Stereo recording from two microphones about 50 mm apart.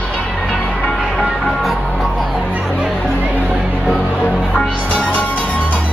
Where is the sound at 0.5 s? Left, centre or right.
Centre.